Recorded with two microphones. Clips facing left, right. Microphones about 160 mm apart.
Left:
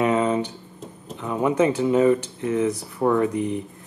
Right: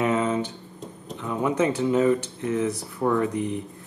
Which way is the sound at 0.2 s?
15° left (ahead or behind).